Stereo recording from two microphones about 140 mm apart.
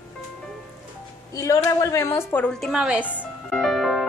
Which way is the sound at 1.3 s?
20° left (ahead or behind).